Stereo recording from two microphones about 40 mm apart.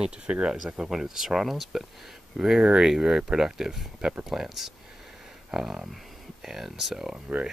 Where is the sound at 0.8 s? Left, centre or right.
Centre.